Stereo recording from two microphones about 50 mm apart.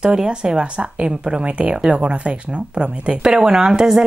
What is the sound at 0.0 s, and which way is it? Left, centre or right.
Speech, centre.